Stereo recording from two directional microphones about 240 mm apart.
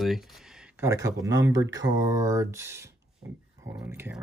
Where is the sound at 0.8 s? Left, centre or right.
Centre.